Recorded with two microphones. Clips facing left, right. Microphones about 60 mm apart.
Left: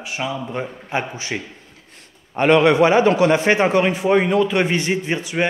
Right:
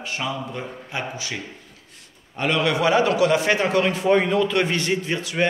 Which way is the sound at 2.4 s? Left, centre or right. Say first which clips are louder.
Left 7 dB; left.